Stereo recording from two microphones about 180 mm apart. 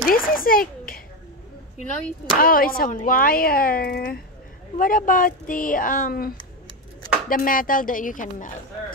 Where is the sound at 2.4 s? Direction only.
55° left (ahead or behind).